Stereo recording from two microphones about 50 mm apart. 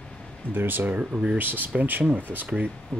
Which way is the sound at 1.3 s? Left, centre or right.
Right.